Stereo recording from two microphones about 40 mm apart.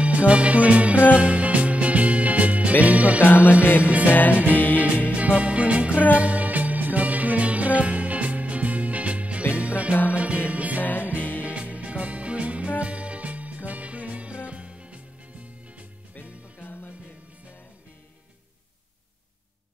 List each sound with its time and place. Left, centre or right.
0.0 s music: right
3.2 s music: left
4.7 s music: right
10.8 s music: left
11.4 s music: right
16.5 s music: left